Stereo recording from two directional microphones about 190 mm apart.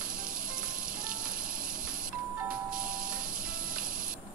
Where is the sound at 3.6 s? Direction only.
45° right (ahead or behind).